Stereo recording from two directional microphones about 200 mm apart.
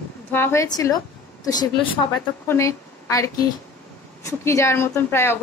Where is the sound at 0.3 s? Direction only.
10° left (ahead or behind).